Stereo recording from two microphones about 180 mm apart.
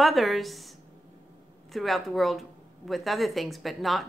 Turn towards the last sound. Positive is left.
turn(degrees=0)  # may be behind; listen again after turning